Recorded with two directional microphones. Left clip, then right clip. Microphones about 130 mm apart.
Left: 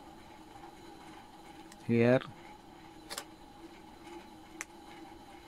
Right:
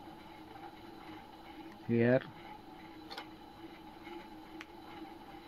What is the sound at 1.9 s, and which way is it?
Speech, 40° left (ahead or behind).